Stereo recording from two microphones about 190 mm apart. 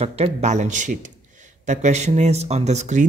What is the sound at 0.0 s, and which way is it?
Speech, 30° right (ahead or behind).